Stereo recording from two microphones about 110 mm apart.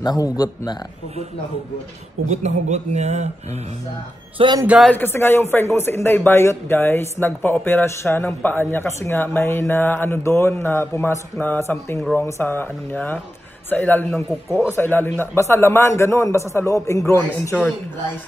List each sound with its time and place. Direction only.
0.0 s speech: 35° left (ahead or behind)
2.2 s speech: 85° right
4.4 s a man's voice: 55° right (ahead or behind)
4.8 s speech: 20° left (ahead or behind)